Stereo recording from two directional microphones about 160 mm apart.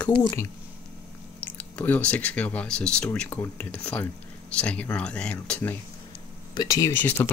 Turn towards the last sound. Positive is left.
turn(degrees=10)  # may be behind; listen again after turning